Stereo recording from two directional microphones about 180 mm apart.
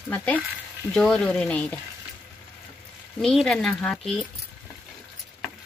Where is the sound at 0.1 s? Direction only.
10° left (ahead or behind).